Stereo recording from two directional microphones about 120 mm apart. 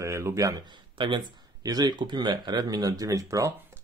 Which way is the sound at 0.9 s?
40° right (ahead or behind).